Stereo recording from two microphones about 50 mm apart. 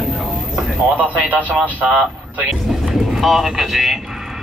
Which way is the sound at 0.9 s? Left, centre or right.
Right.